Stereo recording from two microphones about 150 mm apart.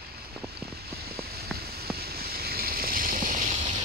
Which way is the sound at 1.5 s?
90° right.